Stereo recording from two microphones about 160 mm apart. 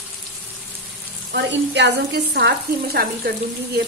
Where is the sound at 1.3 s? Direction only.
90° right.